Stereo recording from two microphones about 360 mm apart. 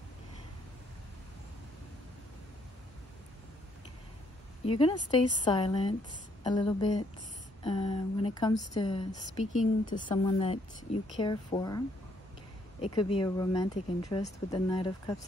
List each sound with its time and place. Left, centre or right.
4.6 s speech: centre
12.8 s speech: centre